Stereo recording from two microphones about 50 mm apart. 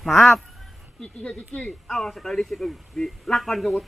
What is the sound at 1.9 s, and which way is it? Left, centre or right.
A man's voice, centre.